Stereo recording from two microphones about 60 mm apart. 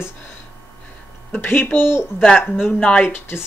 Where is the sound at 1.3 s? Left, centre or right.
Left.